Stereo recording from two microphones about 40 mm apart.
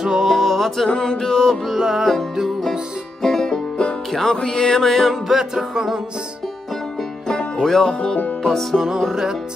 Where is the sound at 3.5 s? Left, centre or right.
Left.